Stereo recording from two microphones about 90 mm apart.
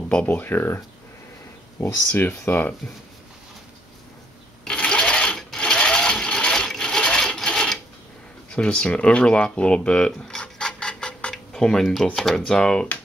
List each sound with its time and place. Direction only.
0.1 s speech: 15° left (ahead or behind)
4.6 s sewing machine: 10° left (ahead or behind)
8.5 s speech: 10° left (ahead or behind)